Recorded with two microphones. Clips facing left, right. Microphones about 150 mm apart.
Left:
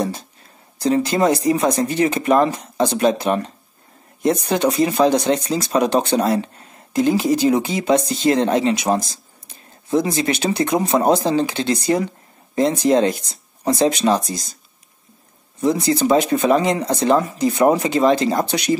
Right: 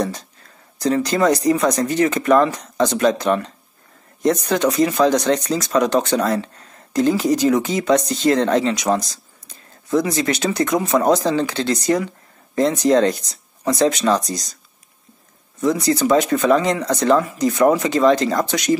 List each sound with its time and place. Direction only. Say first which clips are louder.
0.7 s speech: left 1 dB; 25° left (ahead or behind)
15.6 s speech: even; 25° left (ahead or behind)